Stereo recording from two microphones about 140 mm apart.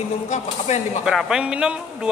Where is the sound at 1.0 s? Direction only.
5° right (ahead or behind).